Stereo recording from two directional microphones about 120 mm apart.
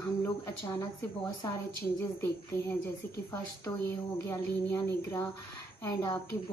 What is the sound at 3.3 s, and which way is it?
Speech, 20° left (ahead or behind).